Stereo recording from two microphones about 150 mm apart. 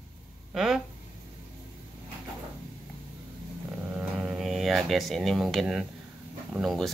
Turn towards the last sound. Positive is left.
turn(degrees=0)  # may be behind; listen again after turning